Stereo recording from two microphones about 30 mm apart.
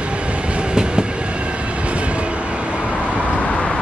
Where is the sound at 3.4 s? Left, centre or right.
Left.